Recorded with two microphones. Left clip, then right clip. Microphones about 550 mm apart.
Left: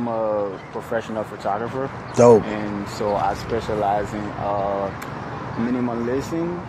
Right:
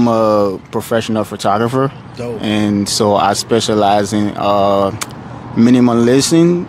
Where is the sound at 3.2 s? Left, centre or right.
Right.